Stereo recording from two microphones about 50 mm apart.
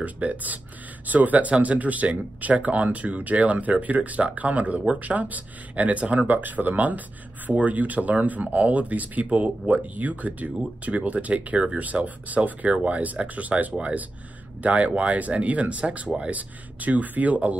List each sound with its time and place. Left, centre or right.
0.0 s speech: right